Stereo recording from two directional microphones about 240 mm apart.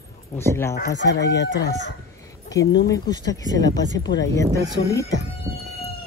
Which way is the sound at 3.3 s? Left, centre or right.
Centre.